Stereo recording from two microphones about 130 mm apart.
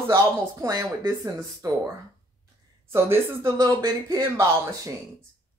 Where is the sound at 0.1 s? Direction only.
25° right (ahead or behind).